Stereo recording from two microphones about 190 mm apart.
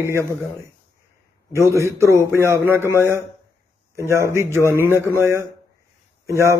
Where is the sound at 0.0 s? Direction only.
15° right (ahead or behind).